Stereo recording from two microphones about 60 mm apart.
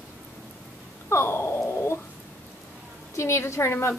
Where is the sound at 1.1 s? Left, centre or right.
Left.